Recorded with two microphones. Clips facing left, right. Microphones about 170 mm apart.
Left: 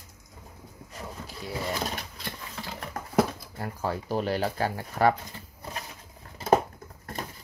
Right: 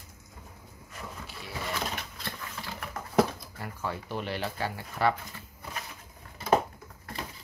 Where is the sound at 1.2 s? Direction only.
40° left (ahead or behind).